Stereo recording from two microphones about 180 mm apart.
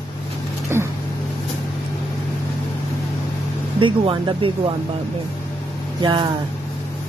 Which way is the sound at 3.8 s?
30° right (ahead or behind).